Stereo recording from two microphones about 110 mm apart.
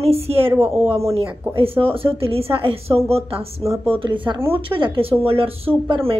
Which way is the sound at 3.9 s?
50° right (ahead or behind).